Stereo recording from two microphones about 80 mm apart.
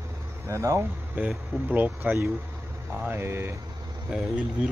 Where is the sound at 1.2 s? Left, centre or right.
Right.